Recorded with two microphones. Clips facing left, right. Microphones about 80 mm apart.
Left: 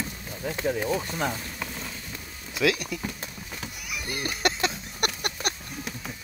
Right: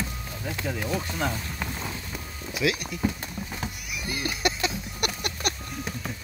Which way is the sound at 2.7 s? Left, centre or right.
Right.